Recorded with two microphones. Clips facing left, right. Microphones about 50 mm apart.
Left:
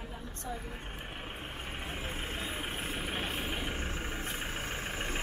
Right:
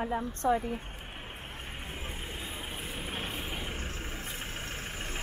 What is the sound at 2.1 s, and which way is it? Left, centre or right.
Vehicle, left.